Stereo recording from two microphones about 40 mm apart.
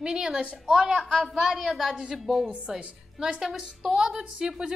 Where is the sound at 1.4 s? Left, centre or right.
Centre.